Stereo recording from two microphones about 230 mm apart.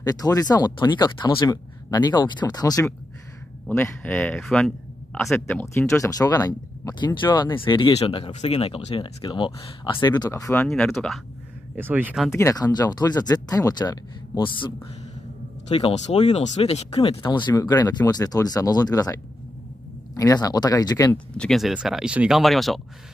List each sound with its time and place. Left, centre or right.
0.0 s speech: centre
12.3 s speech: centre
15.7 s speech: left
20.2 s speech: centre
21.3 s speech: centre